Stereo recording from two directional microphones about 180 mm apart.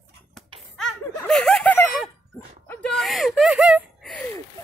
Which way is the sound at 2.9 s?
Centre (ahead or behind).